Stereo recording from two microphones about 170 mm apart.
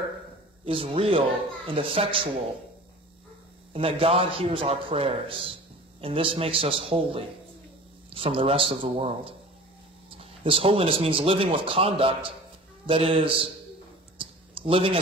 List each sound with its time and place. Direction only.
0.7 s a man's voice: 35° right (ahead or behind)
3.7 s a man's voice: 35° right (ahead or behind)
14.2 s a sound: 30° right (ahead or behind)